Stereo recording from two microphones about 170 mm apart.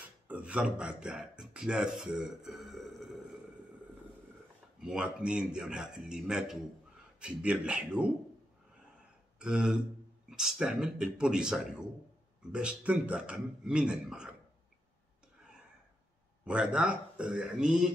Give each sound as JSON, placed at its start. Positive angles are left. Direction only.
{"t": 0.3, "sound": "speech", "side_deg": -10}
{"t": 4.7, "sound": "a man's voice", "side_deg": -5}
{"t": 9.4, "sound": "a man's voice", "side_deg": -5}
{"t": 16.4, "sound": "a man's voice", "side_deg": -5}